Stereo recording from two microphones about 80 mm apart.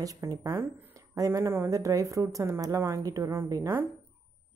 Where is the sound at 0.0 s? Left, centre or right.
Right.